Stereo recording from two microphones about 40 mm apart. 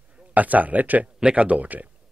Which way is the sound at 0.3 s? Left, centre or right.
Right.